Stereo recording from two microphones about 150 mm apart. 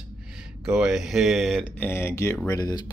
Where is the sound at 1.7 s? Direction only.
15° left (ahead or behind).